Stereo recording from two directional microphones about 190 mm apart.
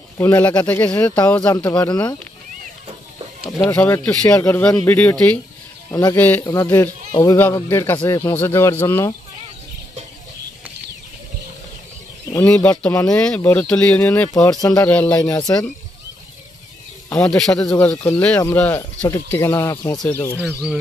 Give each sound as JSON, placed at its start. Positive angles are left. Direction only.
{"t": 0.2, "sound": "speech", "side_deg": 10}
{"t": 3.6, "sound": "speech", "side_deg": 10}
{"t": 12.3, "sound": "speech", "side_deg": 10}
{"t": 14.3, "sound": "speech", "side_deg": 20}
{"t": 14.9, "sound": "speech", "side_deg": 5}
{"t": 15.2, "sound": "speech", "side_deg": 20}
{"t": 17.3, "sound": "speech", "side_deg": 5}
{"t": 20.1, "sound": "speech", "side_deg": 10}